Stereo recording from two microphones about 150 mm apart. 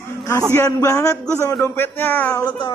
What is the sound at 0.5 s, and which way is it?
Speech, 20° left (ahead or behind).